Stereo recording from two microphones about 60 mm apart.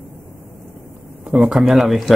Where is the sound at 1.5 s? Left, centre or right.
Centre.